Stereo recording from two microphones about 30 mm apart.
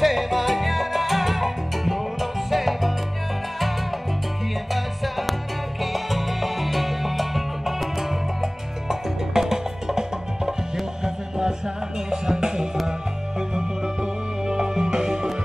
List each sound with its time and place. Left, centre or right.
0.0 s salsa music: centre
4.7 s music: centre
8.4 s music: centre
14.4 s music: right